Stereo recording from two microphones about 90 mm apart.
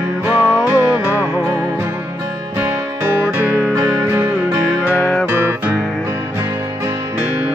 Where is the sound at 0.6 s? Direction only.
25° right (ahead or behind).